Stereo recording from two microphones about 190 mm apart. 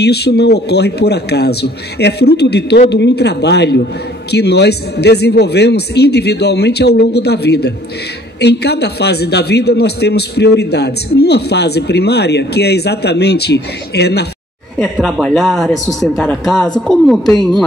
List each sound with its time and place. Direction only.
0.0 s a man's voice: 60° left (ahead or behind)
14.8 s a man's voice: centre (ahead or behind)